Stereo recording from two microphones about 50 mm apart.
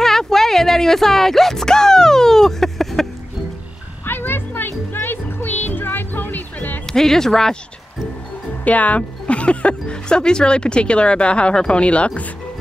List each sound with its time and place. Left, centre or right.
0.0 s music: centre
4.0 s music: left
6.9 s speech: centre
8.6 s speech: left